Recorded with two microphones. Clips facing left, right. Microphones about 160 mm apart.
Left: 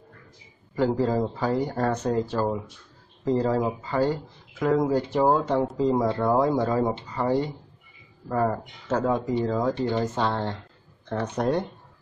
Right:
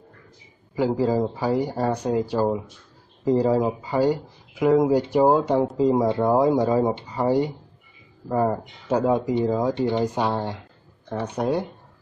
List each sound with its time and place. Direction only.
0.7 s speech: 10° right (ahead or behind)